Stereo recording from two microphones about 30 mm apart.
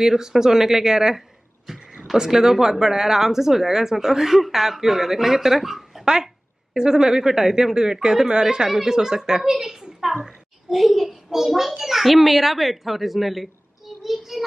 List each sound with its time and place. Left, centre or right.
0.0 s speech: centre
6.2 s speech: right
10.7 s speech: centre
11.2 s a child's voice: centre